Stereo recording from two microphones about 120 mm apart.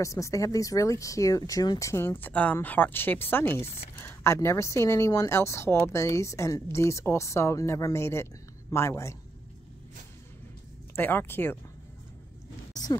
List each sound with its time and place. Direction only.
0.0 s speech: 25° left (ahead or behind)
11.0 s speech: 15° left (ahead or behind)